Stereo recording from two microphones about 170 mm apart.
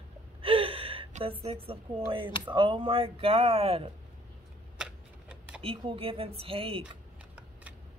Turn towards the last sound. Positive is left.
turn(degrees=-30)  # may be behind; listen again after turning